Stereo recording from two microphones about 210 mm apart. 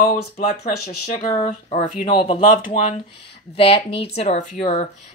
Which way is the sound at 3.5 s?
25° left (ahead or behind).